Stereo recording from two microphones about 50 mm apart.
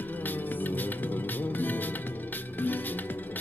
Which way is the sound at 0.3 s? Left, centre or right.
Left.